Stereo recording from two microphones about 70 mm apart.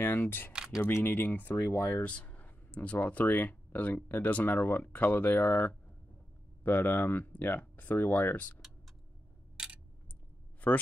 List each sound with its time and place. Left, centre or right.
0.0 s speech: left
0.5 s speech: centre
0.8 s speech: left
1.6 s speech: left
1.9 s speech: left